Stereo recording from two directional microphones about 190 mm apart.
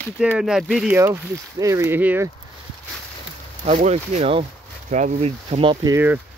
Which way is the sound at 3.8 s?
35° right (ahead or behind).